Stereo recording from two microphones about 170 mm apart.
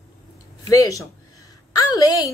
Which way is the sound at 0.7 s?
20° left (ahead or behind).